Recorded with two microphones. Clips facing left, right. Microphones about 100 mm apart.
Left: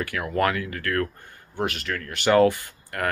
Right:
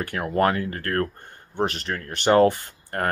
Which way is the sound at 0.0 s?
30° right (ahead or behind).